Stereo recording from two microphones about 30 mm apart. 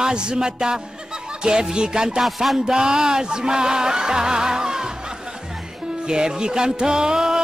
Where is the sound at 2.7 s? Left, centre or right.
Right.